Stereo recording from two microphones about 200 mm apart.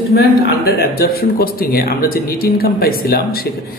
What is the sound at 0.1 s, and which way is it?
A man's voice, 45° left (ahead or behind).